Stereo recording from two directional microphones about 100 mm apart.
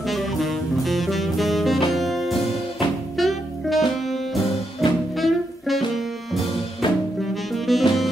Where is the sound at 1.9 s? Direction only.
Centre (ahead or behind).